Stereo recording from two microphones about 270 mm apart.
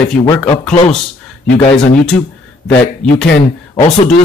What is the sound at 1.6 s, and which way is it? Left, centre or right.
Speech, left.